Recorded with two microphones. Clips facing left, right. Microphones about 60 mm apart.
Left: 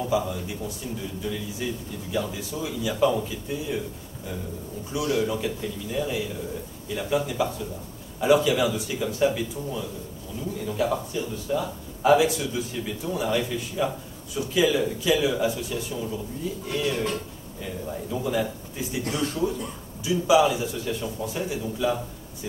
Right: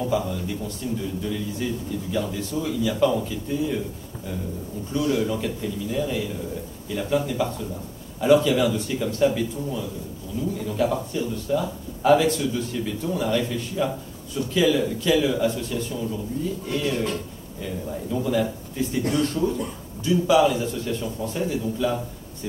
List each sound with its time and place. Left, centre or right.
0.0 s a man's voice: centre
5.1 s a man's voice: centre